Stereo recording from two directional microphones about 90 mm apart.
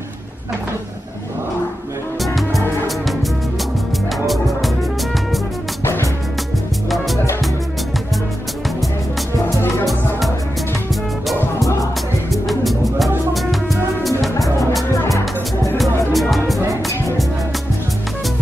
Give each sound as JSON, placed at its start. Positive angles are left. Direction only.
{"t": 2.2, "sound": "music", "side_deg": 0}
{"t": 4.3, "sound": "music", "side_deg": 0}
{"t": 12.3, "sound": "music", "side_deg": 0}
{"t": 15.0, "sound": "music", "side_deg": 35}
{"t": 16.1, "sound": "music", "side_deg": 0}